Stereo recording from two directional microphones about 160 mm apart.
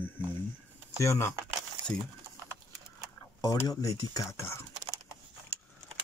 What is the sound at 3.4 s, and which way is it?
Speech, 20° left (ahead or behind).